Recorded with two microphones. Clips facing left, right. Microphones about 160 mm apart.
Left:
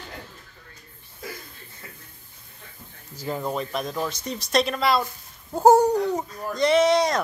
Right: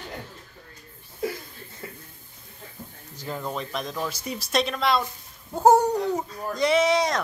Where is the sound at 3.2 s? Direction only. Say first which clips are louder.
Left 4 dB; 10° left (ahead or behind).